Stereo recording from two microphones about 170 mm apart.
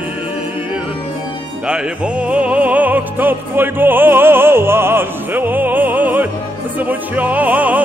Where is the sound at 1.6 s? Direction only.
5° right (ahead or behind).